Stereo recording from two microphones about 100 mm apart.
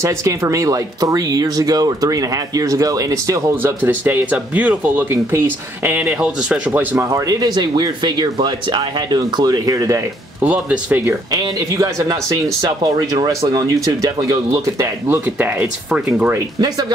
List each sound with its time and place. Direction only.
0.0 s speech: 30° right (ahead or behind)
5.9 s speech: 10° right (ahead or behind)
7.1 s speech: 35° right (ahead or behind)
10.4 s speech: 15° right (ahead or behind)
11.3 s speech: 35° right (ahead or behind)
15.0 s speech: 20° right (ahead or behind)